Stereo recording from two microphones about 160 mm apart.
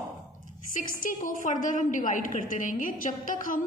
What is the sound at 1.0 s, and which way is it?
A woman's voice, 55° left (ahead or behind).